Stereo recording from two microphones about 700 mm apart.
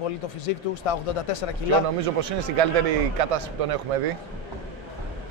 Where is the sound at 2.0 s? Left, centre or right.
Right.